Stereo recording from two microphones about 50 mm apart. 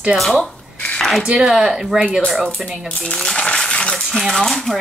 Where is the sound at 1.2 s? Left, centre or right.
Centre.